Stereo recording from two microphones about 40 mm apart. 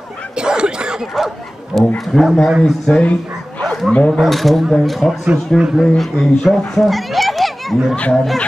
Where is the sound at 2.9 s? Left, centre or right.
Left.